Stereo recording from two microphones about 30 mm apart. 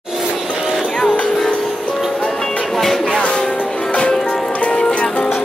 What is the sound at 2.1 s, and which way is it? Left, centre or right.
Music, left.